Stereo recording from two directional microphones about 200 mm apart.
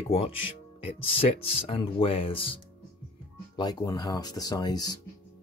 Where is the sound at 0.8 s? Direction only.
30° left (ahead or behind).